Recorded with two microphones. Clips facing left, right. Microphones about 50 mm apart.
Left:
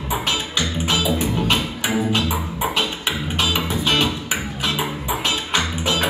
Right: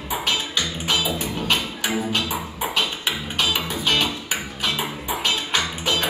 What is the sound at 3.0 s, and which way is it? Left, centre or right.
Music, centre.